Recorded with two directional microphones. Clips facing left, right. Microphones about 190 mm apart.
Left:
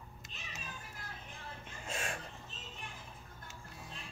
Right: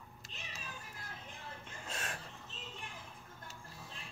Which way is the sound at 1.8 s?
10° left (ahead or behind).